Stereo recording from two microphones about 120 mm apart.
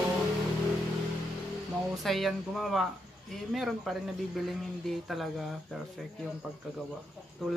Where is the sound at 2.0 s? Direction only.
Centre (ahead or behind).